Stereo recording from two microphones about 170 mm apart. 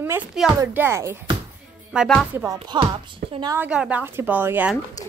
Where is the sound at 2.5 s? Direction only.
25° right (ahead or behind).